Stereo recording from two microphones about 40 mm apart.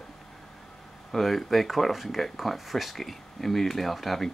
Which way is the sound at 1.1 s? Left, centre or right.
Centre.